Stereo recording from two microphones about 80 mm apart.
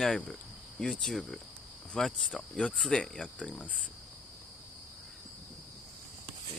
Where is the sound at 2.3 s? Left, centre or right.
Centre.